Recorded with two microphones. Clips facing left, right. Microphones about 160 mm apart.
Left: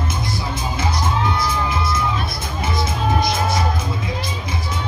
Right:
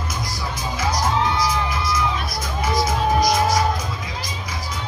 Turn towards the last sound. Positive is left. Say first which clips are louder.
# right 2 dB
turn(degrees=25)  # may be behind; listen again after turning